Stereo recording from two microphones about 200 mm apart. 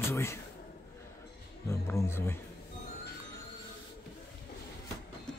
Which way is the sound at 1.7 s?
15° left (ahead or behind).